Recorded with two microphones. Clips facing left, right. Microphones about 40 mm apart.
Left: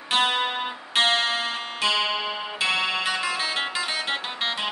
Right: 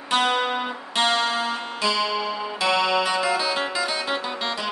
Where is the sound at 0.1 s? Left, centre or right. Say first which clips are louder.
Right 2 dB; left.